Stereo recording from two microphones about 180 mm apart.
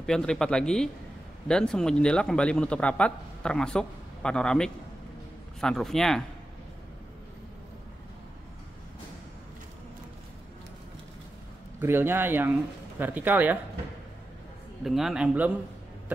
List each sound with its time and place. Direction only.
0.0 s speech: 5° left (ahead or behind)
11.8 s speech: 10° right (ahead or behind)
14.8 s speech: centre (ahead or behind)